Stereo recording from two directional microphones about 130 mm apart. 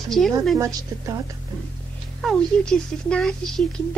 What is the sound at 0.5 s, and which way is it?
Speech, 25° right (ahead or behind).